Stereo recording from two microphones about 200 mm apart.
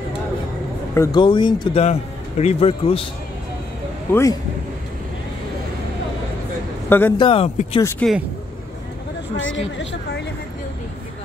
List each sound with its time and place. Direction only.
0.9 s a man's voice: 20° left (ahead or behind)
4.1 s speech: 15° left (ahead or behind)
6.9 s speech: 10° left (ahead or behind)
7.2 s a man's voice: 25° left (ahead or behind)
8.0 s speech: 5° left (ahead or behind)